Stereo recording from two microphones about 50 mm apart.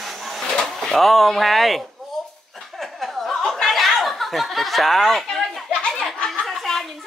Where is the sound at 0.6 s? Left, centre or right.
Centre.